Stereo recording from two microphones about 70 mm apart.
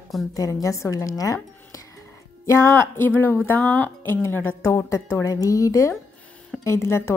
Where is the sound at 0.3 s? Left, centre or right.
Left.